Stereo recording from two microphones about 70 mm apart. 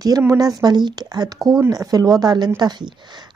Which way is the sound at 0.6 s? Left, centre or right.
Right.